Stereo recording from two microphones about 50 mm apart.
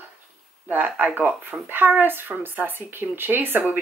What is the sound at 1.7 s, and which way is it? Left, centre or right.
Speech, right.